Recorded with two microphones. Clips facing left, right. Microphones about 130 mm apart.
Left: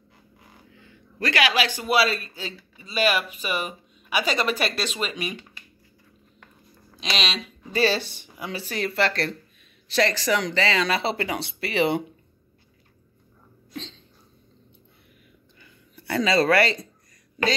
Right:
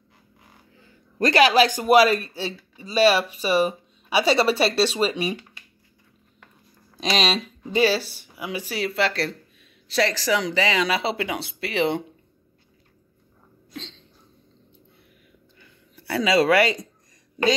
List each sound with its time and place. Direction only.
0.7 s a man's voice: 35° right (ahead or behind)
2.3 s speech: 35° right (ahead or behind)
7.0 s speech: 40° right (ahead or behind)
7.7 s speech: 10° right (ahead or behind)
15.6 s a sound: 5° right (ahead or behind)